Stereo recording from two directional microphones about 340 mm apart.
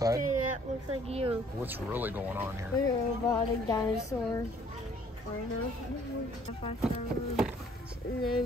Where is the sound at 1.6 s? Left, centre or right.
Centre.